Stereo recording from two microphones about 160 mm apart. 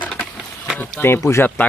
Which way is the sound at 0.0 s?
10° left (ahead or behind).